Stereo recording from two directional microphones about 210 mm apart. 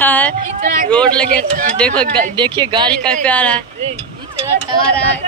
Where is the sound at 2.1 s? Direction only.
25° right (ahead or behind).